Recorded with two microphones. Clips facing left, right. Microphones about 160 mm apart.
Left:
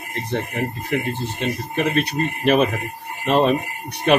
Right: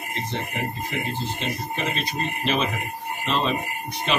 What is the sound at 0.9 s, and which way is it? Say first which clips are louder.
Speech: left 5 dB; 60° left (ahead or behind).